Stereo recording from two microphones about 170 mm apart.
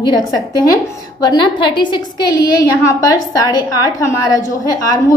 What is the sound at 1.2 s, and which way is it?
A woman's voice, 25° left (ahead or behind).